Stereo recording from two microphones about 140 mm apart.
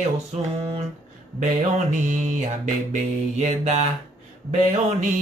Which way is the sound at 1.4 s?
60° right (ahead or behind).